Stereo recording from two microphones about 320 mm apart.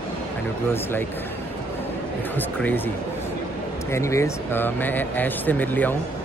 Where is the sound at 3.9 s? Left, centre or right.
Centre.